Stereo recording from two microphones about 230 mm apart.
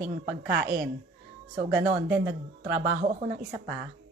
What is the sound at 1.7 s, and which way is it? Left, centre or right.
A woman's voice, centre.